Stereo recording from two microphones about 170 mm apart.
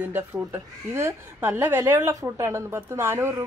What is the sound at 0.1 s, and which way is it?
A woman's voice, 15° right (ahead or behind).